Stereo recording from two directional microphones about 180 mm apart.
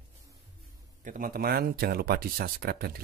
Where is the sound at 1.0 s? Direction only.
50° right (ahead or behind).